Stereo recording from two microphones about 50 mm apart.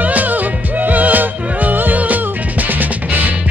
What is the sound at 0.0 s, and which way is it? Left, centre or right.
Music, right.